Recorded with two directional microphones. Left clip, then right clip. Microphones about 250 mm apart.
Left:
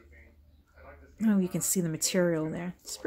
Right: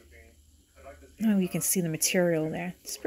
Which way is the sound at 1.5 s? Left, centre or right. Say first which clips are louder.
Right 1 dB; left.